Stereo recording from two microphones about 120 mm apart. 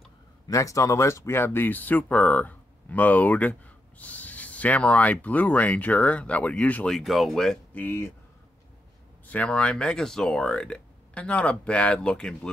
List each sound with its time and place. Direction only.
0.5 s speech: 25° left (ahead or behind); by 7.8 s 5° left (ahead or behind)
7.8 s speech: 15° left (ahead or behind)
9.3 s speech: 10° left (ahead or behind)